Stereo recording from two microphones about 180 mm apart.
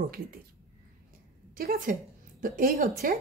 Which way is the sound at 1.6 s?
55° right (ahead or behind).